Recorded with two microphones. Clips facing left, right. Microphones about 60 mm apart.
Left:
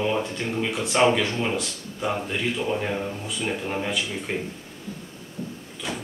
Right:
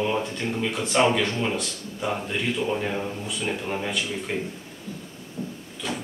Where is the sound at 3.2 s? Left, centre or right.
Centre.